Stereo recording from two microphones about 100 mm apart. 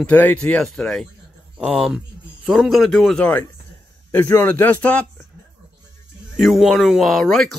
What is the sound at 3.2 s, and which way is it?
Speech, 20° left (ahead or behind).